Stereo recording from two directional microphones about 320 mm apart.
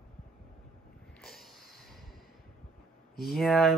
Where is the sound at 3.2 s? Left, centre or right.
Centre.